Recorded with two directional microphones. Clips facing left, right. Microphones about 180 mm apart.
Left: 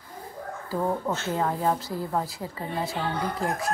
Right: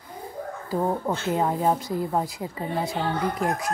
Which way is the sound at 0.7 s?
20° right (ahead or behind).